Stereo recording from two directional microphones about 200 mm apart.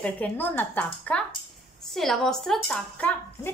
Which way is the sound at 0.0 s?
10° left (ahead or behind).